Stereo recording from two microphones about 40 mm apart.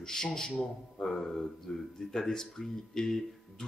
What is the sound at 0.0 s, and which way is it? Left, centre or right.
A man's voice, centre.